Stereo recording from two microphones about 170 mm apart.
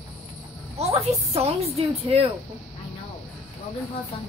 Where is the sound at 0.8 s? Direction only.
35° right (ahead or behind).